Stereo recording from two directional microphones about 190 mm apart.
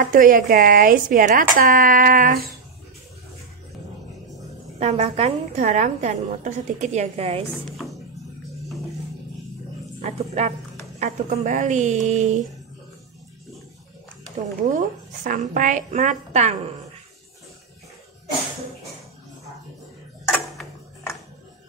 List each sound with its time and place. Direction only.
0.0 s speech: 45° right (ahead or behind)
4.7 s a woman's voice: 35° right (ahead or behind)
7.7 s music: centre (ahead or behind)
10.0 s a woman's voice: 35° right (ahead or behind)
14.7 s a woman's voice: 40° right (ahead or behind)